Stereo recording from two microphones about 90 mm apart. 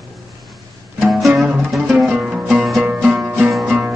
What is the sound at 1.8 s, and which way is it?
Music, 15° right (ahead or behind).